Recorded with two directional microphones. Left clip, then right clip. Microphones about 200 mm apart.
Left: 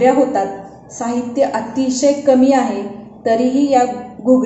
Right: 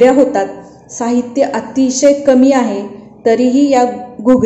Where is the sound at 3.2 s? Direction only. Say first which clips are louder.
Right 4 dB; 30° right (ahead or behind).